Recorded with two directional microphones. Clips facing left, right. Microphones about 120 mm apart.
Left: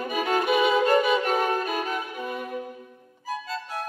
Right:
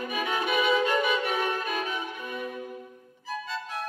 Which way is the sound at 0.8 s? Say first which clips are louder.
Left 5 dB; 40° left (ahead or behind).